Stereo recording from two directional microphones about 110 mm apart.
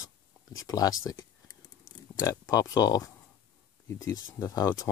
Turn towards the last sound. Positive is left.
turn(degrees=30)  # may be behind; listen again after turning